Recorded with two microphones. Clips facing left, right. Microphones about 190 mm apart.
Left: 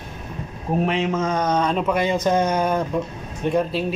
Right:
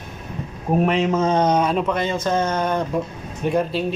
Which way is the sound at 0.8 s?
40° right (ahead or behind).